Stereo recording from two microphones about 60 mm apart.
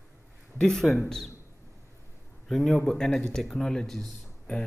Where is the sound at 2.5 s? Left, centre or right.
Centre.